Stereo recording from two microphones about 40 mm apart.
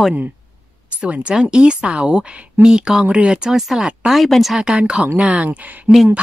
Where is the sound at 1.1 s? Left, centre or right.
Right; by 3.1 s centre.